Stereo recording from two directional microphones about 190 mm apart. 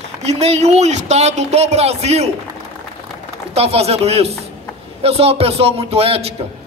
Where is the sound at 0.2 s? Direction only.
35° right (ahead or behind).